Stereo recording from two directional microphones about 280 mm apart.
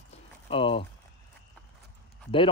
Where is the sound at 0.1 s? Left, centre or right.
Centre.